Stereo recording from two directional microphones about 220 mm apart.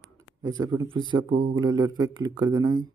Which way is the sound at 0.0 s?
65° right (ahead or behind).